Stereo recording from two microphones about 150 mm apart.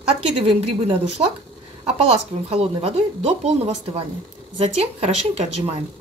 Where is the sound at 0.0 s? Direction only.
40° right (ahead or behind).